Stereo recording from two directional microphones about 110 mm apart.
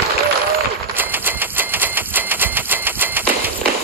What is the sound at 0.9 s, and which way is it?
Typewriter, 15° right (ahead or behind).